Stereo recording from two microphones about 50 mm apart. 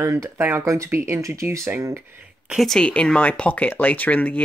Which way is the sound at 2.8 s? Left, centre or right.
Left.